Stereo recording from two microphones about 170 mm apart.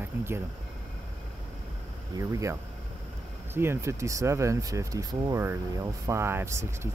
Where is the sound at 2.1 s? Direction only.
20° right (ahead or behind).